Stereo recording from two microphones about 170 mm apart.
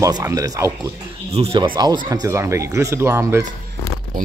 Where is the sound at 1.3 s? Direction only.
35° right (ahead or behind); by 3.4 s 15° right (ahead or behind).